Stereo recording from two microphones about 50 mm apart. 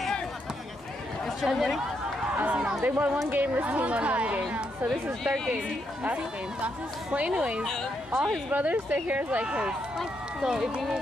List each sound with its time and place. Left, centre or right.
1.4 s speech: centre
2.3 s speech: right
2.8 s a woman's voice: right
5.2 s speech: centre
6.0 s speech: right
7.6 s speech: centre
8.5 s a woman's voice: right
9.9 s speech: centre